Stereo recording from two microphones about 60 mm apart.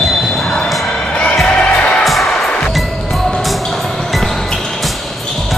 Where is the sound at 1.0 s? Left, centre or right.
Centre.